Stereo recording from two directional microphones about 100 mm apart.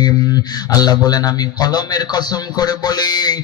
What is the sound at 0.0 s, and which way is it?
Speech, 40° left (ahead or behind).